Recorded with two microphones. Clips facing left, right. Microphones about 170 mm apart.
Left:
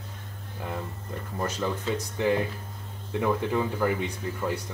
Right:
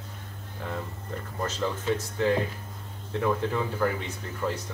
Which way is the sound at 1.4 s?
10° left (ahead or behind).